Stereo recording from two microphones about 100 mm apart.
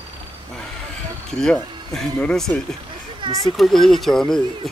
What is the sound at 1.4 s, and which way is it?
A child's voice, 5° left (ahead or behind).